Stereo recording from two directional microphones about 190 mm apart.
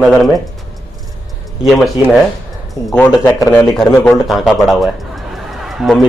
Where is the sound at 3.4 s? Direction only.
15° left (ahead or behind).